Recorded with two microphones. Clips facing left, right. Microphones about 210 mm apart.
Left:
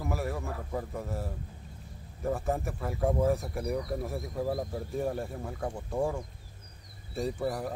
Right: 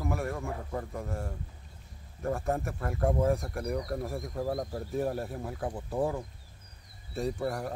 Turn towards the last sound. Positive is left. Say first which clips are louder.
# even
turn(degrees=0)  # may be behind; listen again after turning